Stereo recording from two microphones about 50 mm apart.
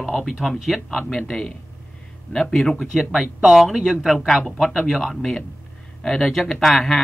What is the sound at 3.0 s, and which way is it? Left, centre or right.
Speech, centre.